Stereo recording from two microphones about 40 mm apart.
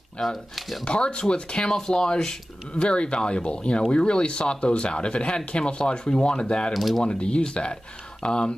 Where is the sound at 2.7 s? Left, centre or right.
Left.